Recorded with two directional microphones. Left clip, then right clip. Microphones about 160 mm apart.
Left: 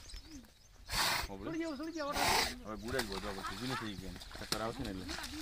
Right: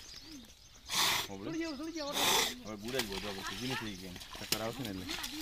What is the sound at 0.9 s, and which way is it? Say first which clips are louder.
Roaring cats: right 3 dB; 5° left (ahead or behind).